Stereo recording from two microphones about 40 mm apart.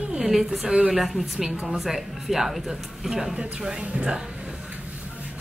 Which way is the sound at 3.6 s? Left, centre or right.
Right.